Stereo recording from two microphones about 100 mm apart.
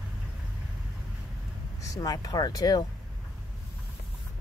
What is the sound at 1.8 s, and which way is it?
Speech, 35° left (ahead or behind).